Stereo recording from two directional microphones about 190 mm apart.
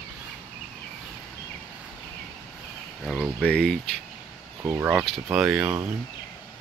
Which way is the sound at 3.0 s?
5° right (ahead or behind).